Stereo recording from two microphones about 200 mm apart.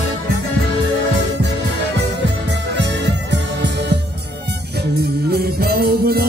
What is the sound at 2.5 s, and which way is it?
Music, 60° right (ahead or behind).